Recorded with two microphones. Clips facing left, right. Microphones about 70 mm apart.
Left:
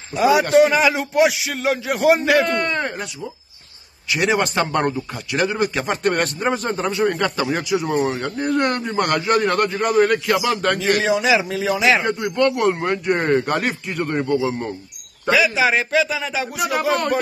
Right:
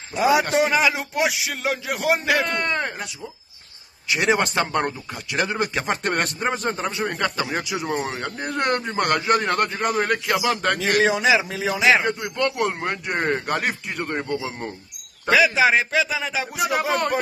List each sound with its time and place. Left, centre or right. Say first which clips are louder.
0.1 s a man's voice: left 4 dB; centre
4.1 s a man's voice: left 1 dB; right
4.6 s a man's voice: left 3 dB; centre
11.0 s speech: even; right
11.3 s speech: left 3 dB; centre
15.3 s a man's voice: right 1 dB; right